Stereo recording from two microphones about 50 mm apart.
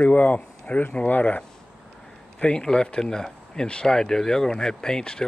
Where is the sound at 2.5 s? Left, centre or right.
Centre.